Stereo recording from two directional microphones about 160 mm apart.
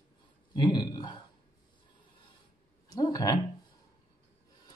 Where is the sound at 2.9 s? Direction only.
25° left (ahead or behind).